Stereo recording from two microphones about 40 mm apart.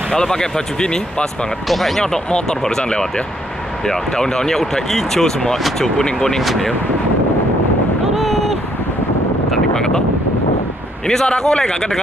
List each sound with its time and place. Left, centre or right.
0.1 s speech: centre
1.7 s speech: centre
2.3 s speech: centre
8.1 s vehicle: centre
9.8 s wind noise: centre
11.1 s speech: centre